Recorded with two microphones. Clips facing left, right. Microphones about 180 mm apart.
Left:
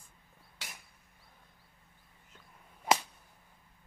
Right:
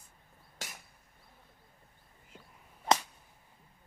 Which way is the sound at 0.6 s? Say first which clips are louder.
Right 4 dB; 45° right (ahead or behind).